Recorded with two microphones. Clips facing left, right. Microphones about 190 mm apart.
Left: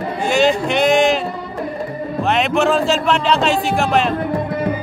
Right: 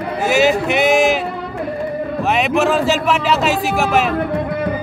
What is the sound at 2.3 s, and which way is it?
A man's voice, centre (ahead or behind).